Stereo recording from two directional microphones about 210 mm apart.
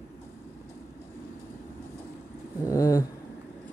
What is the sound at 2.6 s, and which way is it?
Speech, 15° left (ahead or behind).